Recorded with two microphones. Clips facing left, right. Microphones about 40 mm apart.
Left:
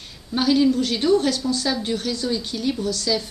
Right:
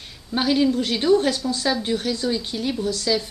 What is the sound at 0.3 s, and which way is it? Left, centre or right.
A woman's voice, centre.